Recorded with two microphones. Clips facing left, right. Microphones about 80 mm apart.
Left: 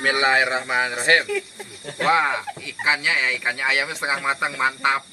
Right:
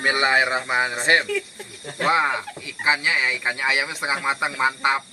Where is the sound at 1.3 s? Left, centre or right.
Centre.